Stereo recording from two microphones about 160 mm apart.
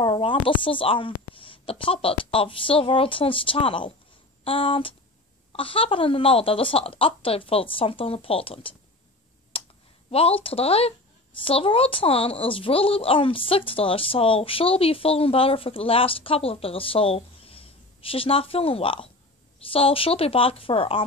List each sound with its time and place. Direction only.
0.0 s a woman's voice: 30° left (ahead or behind)
9.5 s a sound: 35° left (ahead or behind)
10.1 s a woman's voice: 35° left (ahead or behind)